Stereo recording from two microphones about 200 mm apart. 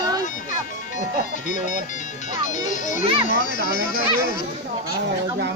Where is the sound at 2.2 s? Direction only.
35° left (ahead or behind).